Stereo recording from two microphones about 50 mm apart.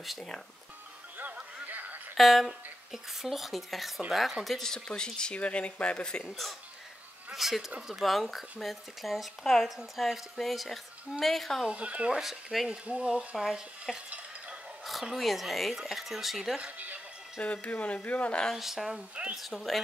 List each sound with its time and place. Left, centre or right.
1.1 s music: right
2.1 s speech: centre
4.6 s speech: centre
7.3 s speech: centre
11.7 s speech: right
12.2 s speech: centre
12.6 s speech: right
13.4 s speech: centre
15.1 s speech: centre
16.7 s music: right
17.4 s speech: left
18.5 s speech: centre